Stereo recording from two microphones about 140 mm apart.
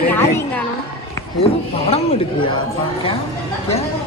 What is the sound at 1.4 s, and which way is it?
Speech, 45° left (ahead or behind).